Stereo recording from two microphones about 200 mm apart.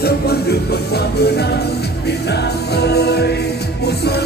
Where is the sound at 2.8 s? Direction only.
55° left (ahead or behind).